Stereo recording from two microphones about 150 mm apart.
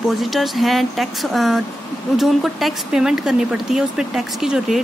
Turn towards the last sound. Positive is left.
turn(degrees=0)  # may be behind; listen again after turning